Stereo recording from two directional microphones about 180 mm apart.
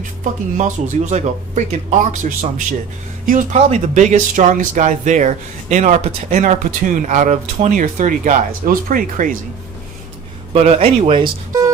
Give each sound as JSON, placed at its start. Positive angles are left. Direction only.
{"t": 0.2, "sound": "speech", "side_deg": -45}
{"t": 10.5, "sound": "speech", "side_deg": -35}